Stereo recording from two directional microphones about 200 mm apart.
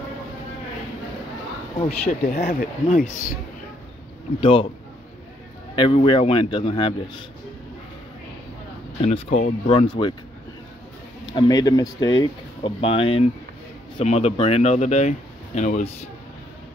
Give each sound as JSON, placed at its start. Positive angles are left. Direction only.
{"t": 2.0, "sound": "speech", "side_deg": 40}
{"t": 4.4, "sound": "speech", "side_deg": 25}
{"t": 5.8, "sound": "speech", "side_deg": 25}
{"t": 9.0, "sound": "speech", "side_deg": 30}
{"t": 11.2, "sound": "speech", "side_deg": 20}